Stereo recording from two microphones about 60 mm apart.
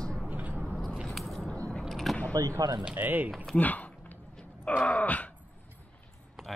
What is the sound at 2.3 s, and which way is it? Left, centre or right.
Speech, right.